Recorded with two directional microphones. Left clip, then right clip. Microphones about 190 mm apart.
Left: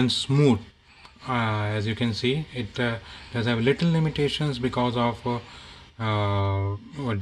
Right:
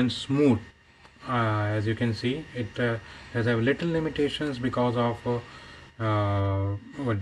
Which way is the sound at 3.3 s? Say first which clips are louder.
Left 1 dB; 60° left (ahead or behind).